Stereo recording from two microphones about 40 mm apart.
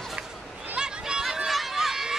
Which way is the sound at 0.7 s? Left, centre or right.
Centre.